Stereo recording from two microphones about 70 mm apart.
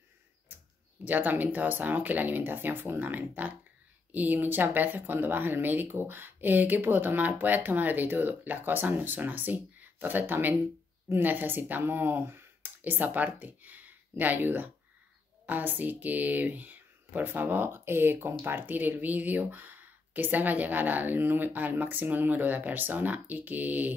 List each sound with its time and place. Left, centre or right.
1.0 s speech: right